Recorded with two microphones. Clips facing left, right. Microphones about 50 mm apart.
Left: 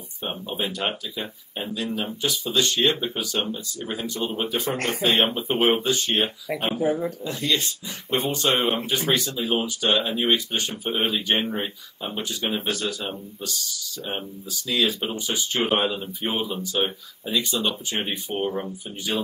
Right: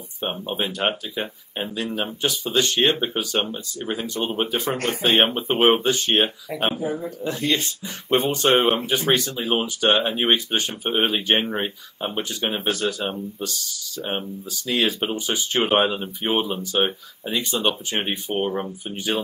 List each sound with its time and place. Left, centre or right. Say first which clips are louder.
0.2 s speech: right 3 dB; right
6.7 s speech: left 3 dB; left
7.2 s speech: right 5 dB; right